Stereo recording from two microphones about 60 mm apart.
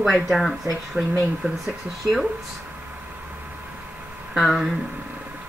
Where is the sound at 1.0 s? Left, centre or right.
Right.